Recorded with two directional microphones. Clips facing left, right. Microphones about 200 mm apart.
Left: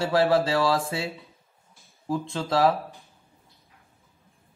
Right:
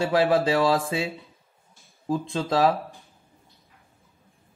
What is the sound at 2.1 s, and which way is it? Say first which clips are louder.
Speech: right 1 dB; 20° right (ahead or behind).